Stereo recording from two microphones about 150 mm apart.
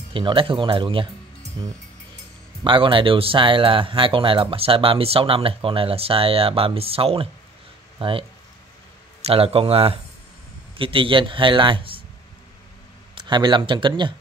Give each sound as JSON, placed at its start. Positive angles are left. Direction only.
{"t": 0.1, "sound": "speech", "side_deg": -35}
{"t": 2.6, "sound": "speech", "side_deg": -35}
{"t": 13.1, "sound": "speech", "side_deg": -30}